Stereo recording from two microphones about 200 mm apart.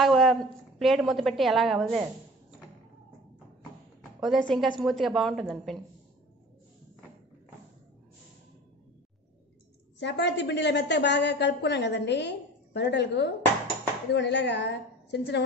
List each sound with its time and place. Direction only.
0.0 s a woman's voice: centre (ahead or behind)
4.2 s a woman's voice: centre (ahead or behind)
9.9 s a woman's voice: 60° left (ahead or behind)